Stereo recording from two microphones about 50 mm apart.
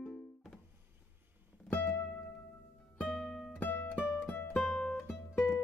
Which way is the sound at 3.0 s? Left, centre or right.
Centre.